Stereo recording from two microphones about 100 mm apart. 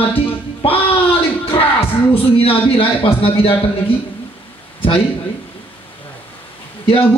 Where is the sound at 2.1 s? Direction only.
70° left (ahead or behind).